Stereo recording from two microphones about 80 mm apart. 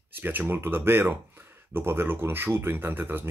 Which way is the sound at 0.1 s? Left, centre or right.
Right.